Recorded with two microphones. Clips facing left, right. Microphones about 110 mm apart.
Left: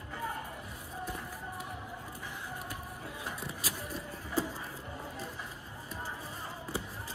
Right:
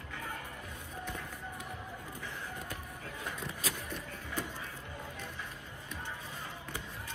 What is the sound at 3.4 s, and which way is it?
Vehicle, 35° left (ahead or behind).